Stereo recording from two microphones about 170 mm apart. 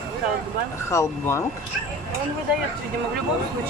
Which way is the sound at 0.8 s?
15° left (ahead or behind).